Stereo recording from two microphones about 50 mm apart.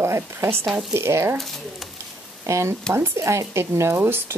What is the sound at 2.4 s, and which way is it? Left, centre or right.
Speech, right.